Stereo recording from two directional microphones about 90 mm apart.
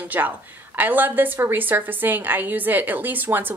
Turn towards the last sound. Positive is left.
turn(degrees=-20)  # may be behind; listen again after turning